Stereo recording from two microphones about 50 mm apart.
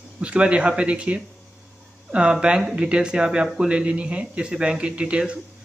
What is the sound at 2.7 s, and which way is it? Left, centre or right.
Speech, centre.